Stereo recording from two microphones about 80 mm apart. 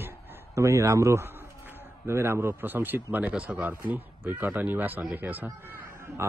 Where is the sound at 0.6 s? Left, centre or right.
Right.